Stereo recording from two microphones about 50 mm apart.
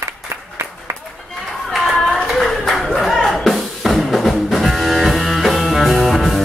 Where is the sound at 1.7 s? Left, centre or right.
Centre.